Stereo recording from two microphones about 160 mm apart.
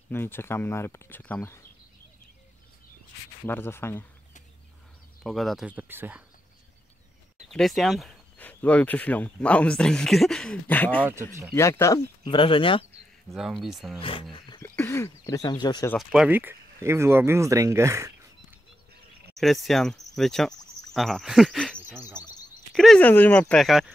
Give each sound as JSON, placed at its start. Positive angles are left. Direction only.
{"t": 0.1, "sound": "speech", "side_deg": 15}
{"t": 3.4, "sound": "speech", "side_deg": 15}
{"t": 5.2, "sound": "speech", "side_deg": 0}
{"t": 7.4, "sound": "speech", "side_deg": 0}
{"t": 8.4, "sound": "speech", "side_deg": 10}
{"t": 12.3, "sound": "speech", "side_deg": 30}
{"t": 13.3, "sound": "speech", "side_deg": 0}
{"t": 14.3, "sound": "a sound", "side_deg": 30}
{"t": 14.6, "sound": "speech", "side_deg": 15}
{"t": 16.0, "sound": "speech", "side_deg": -5}
{"t": 19.3, "sound": "speech", "side_deg": 0}
{"t": 21.8, "sound": "speech", "side_deg": -15}
{"t": 22.8, "sound": "speech", "side_deg": 5}
{"t": 23.5, "sound": "speech", "side_deg": 0}